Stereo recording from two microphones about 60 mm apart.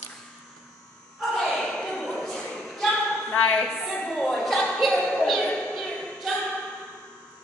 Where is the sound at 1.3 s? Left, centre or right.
Centre.